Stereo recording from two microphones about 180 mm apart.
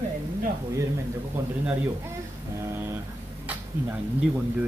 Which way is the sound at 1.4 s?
15° right (ahead or behind).